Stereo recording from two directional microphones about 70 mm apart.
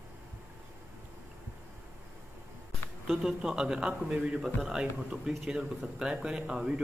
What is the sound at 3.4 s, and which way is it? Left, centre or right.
A man's voice, centre.